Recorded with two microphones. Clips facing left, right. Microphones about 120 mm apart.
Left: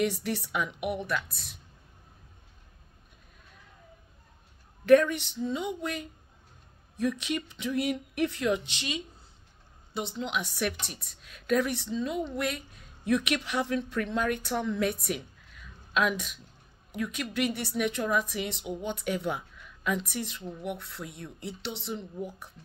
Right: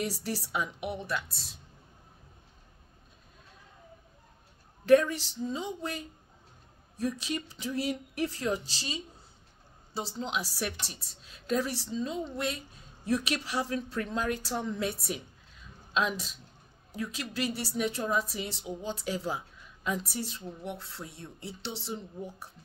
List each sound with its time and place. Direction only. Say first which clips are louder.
0.0 s a woman's voice: left 5 dB; 35° right (ahead or behind)
4.8 s a woman's voice: left 2 dB; 30° right (ahead or behind)